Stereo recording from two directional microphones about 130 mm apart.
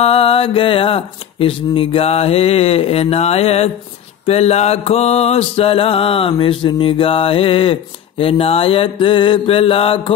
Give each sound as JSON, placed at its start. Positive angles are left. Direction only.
{"t": 0.0, "sound": "speech", "side_deg": 50}